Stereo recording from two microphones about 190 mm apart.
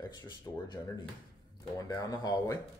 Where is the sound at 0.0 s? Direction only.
20° left (ahead or behind).